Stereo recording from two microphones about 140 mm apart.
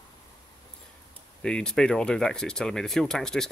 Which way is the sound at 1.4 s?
5° left (ahead or behind).